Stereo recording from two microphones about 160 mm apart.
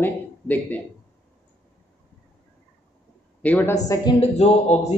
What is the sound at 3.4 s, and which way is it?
Speech, 10° left (ahead or behind).